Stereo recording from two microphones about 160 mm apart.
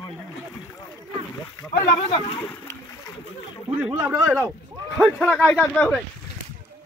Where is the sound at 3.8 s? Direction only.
10° right (ahead or behind).